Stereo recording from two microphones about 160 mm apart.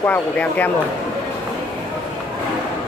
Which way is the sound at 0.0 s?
10° left (ahead or behind).